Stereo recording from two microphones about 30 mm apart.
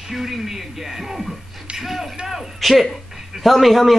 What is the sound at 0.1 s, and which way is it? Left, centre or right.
A man's voice, centre.